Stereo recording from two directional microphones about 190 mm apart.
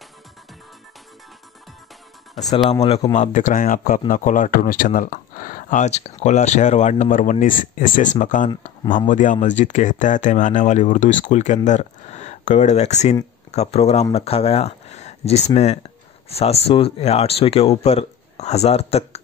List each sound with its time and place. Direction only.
2.5 s speech: 30° left (ahead or behind)